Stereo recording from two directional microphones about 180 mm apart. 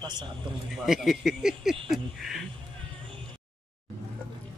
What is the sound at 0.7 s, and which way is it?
Speech, centre (ahead or behind).